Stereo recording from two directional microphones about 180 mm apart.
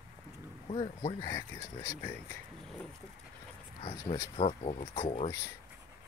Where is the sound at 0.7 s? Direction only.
30° left (ahead or behind).